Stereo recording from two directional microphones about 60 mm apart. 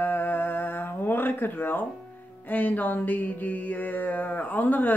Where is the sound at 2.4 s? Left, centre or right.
Left.